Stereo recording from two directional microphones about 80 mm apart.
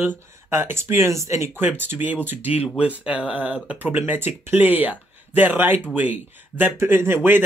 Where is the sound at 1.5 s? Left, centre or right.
Right.